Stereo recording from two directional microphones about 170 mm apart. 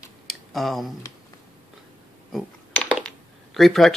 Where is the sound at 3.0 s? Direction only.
Centre (ahead or behind).